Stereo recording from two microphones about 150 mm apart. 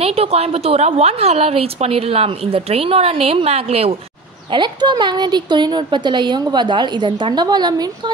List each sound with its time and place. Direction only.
0.0 s a woman's voice: 40° right (ahead or behind)
4.5 s a woman's voice: 30° right (ahead or behind)